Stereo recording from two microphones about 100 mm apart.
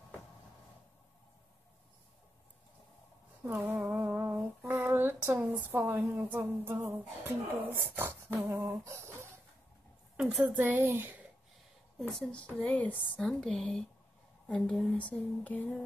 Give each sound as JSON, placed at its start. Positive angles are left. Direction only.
{"t": 3.9, "sound": "humming", "side_deg": -20}
{"t": 4.6, "sound": "female singing", "side_deg": -25}
{"t": 5.4, "sound": "speech", "side_deg": -20}
{"t": 8.4, "sound": "a sound", "side_deg": -25}
{"t": 10.1, "sound": "speech", "side_deg": -10}
{"t": 12.0, "sound": "speech", "side_deg": 5}